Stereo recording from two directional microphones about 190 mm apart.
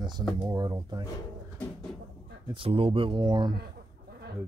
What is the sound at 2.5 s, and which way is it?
Speech, 30° right (ahead or behind).